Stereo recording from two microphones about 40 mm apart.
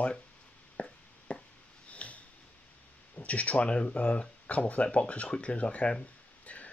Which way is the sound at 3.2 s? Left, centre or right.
Left.